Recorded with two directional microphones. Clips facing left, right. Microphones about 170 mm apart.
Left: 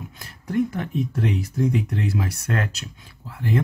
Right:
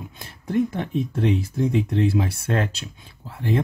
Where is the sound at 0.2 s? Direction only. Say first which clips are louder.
Right 1 dB; 25° right (ahead or behind).